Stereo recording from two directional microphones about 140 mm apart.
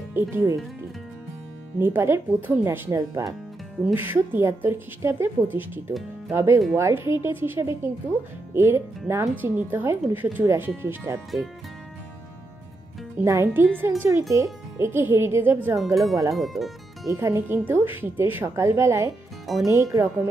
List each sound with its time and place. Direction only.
0.1 s speech: 15° right (ahead or behind)
1.8 s speech: 15° right (ahead or behind)
3.8 s speech: 15° right (ahead or behind)
13.2 s speech: 20° right (ahead or behind)
15.8 s speech: centre (ahead or behind)
17.0 s speech: 20° right (ahead or behind)